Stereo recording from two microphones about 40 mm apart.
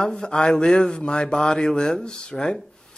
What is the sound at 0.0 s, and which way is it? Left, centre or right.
Speech, left.